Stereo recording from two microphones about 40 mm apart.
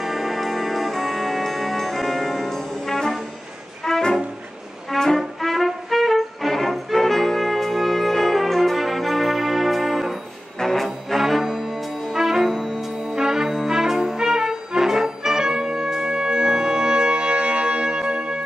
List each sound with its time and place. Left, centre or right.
0.0 s music: centre; by 18.4 s right